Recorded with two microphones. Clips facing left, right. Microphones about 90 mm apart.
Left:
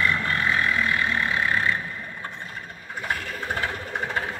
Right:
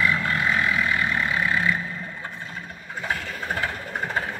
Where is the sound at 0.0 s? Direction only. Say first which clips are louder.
Right 1 dB; 15° right (ahead or behind).